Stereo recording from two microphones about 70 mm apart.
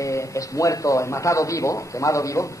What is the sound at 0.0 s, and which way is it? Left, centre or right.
Speech, left.